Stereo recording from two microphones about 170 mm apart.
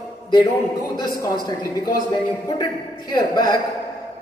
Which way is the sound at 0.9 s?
20° left (ahead or behind).